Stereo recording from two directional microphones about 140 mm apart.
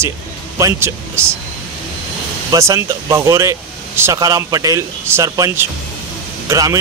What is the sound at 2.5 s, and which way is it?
Speech, 20° right (ahead or behind).